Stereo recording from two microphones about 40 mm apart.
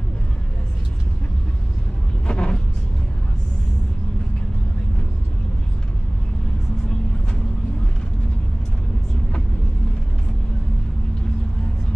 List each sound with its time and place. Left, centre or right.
2.2 s vehicle: left